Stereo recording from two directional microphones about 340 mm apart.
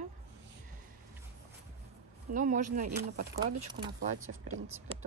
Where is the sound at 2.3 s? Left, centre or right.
Right.